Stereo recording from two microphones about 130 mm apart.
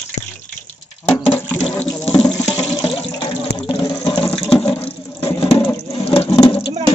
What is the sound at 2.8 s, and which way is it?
Water, 45° left (ahead or behind).